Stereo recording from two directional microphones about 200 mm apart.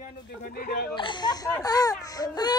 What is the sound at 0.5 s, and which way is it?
Hiccup, 50° left (ahead or behind).